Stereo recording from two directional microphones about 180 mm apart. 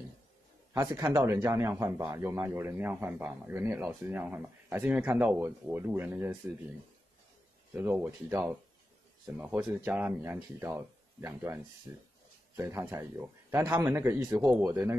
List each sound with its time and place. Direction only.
0.7 s a man's voice: 20° right (ahead or behind)
7.7 s a man's voice: 10° right (ahead or behind)